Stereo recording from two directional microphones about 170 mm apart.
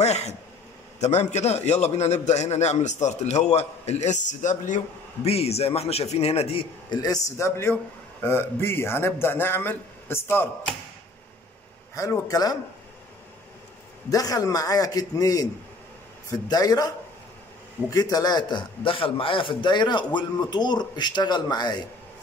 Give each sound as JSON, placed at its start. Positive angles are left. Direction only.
{"t": 0.0, "sound": "a sound", "side_deg": 40}
{"t": 1.0, "sound": "a man's voice", "side_deg": 40}
{"t": 11.9, "sound": "a man's voice", "side_deg": 20}
{"t": 14.1, "sound": "a man's voice", "side_deg": 20}